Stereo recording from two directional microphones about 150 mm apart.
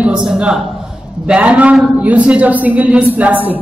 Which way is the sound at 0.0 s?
5° right (ahead or behind).